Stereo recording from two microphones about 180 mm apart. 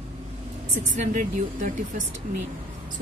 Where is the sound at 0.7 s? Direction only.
45° right (ahead or behind).